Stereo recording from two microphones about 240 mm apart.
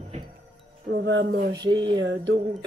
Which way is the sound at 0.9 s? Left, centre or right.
Right.